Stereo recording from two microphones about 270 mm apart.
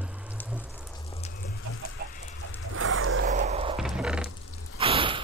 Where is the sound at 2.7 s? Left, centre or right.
Right.